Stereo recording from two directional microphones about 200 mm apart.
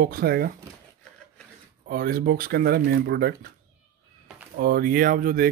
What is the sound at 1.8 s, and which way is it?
Speech, 45° right (ahead or behind).